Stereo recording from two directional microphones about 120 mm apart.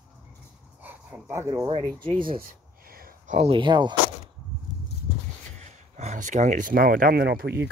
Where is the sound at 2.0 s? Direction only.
45° right (ahead or behind).